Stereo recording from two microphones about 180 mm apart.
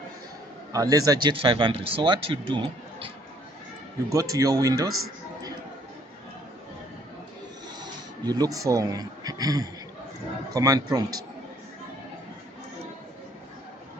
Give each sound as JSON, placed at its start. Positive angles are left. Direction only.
{"t": 0.7, "sound": "speech", "side_deg": -20}
{"t": 4.1, "sound": "speech", "side_deg": -20}
{"t": 7.8, "sound": "speech", "side_deg": -20}